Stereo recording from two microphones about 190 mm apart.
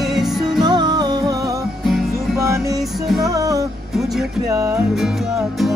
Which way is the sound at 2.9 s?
Centre (ahead or behind).